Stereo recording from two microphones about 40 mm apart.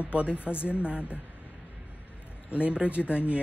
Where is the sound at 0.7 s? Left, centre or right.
Right.